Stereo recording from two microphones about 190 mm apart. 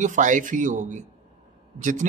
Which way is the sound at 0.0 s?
40° right (ahead or behind).